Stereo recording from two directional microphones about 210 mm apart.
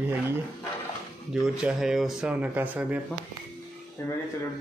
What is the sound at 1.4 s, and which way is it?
Speech, 5° right (ahead or behind).